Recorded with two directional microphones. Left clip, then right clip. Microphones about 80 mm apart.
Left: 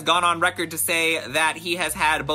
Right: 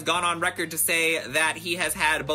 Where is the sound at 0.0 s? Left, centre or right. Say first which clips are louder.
Left 5 dB; left.